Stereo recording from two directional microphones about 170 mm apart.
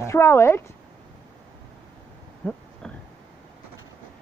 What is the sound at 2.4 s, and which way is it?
Speech, 10° left (ahead or behind).